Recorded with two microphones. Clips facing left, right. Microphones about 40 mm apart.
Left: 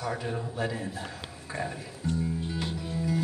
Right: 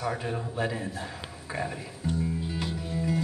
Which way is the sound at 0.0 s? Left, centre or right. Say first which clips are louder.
Right 1 dB; centre.